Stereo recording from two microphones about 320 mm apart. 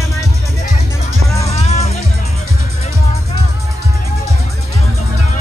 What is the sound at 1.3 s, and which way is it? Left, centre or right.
Music, centre.